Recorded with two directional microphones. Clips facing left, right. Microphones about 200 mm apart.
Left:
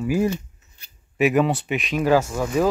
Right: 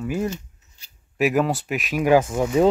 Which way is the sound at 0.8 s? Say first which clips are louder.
Left 2 dB; 55° left (ahead or behind).